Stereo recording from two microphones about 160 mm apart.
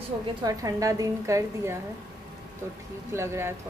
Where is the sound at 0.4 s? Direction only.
20° right (ahead or behind).